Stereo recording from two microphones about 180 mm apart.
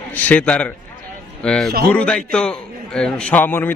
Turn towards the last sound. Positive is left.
turn(degrees=10)  # may be behind; listen again after turning